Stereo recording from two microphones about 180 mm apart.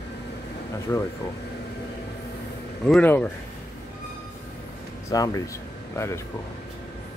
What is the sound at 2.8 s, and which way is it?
Speech, 5° left (ahead or behind).